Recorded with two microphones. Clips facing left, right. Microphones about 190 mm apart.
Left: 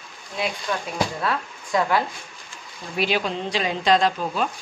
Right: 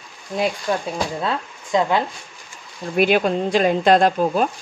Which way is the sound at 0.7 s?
35° right (ahead or behind).